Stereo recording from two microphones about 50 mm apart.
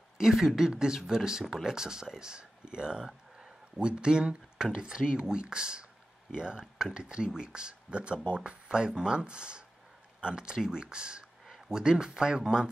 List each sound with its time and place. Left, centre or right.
0.2 s speech: centre